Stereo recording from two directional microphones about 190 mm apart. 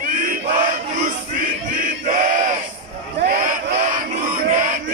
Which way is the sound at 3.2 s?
45° right (ahead or behind).